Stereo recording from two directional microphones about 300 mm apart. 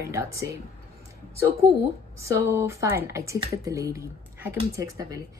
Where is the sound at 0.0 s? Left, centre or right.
Centre.